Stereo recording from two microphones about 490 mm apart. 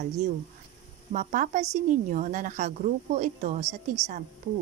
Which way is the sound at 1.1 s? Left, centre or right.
Centre.